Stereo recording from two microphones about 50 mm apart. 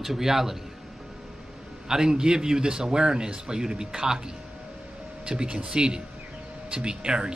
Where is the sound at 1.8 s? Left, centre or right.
Centre.